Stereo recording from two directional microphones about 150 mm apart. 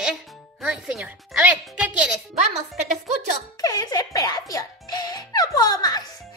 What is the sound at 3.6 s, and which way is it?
Speech, 25° left (ahead or behind).